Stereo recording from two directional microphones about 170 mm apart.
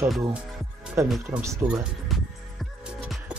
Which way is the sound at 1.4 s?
15° right (ahead or behind).